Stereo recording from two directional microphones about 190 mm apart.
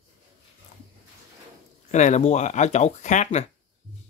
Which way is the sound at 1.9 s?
40° left (ahead or behind).